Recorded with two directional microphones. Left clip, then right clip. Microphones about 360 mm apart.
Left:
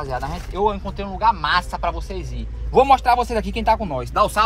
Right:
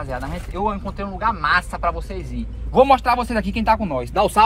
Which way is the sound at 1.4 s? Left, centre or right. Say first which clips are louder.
Right 1 dB; left.